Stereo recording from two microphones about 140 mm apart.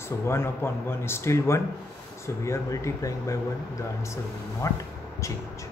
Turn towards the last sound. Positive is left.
turn(degrees=25)  # may be behind; listen again after turning